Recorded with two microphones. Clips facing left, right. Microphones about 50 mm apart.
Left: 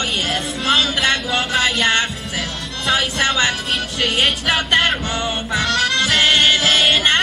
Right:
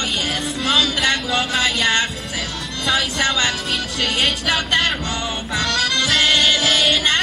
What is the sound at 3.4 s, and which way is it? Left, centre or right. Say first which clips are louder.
Music: left 2 dB; centre.